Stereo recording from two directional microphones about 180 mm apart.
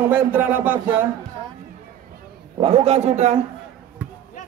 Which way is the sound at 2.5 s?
30° right (ahead or behind).